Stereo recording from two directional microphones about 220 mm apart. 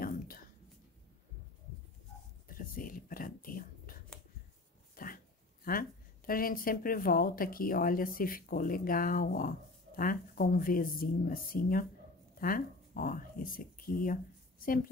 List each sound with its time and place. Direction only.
0.0 s whispering: 40° left (ahead or behind)
2.4 s a sound: 40° left (ahead or behind)
4.9 s speech: 40° left (ahead or behind)